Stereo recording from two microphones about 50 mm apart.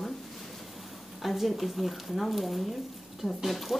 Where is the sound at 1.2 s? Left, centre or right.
Centre.